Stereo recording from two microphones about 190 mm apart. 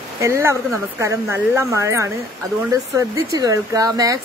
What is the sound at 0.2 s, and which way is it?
Speech, 15° right (ahead or behind).